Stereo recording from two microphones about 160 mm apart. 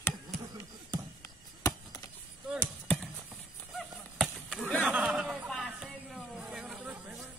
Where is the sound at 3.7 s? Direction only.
Centre (ahead or behind).